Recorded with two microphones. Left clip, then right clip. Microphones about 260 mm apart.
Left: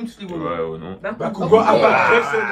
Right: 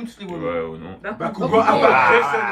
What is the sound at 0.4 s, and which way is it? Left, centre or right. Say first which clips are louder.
Speech: left 1 dB; centre.